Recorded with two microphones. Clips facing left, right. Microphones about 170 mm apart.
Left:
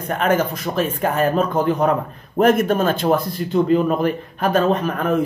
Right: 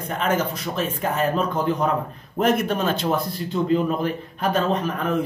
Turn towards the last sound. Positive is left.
turn(degrees=55)  # may be behind; listen again after turning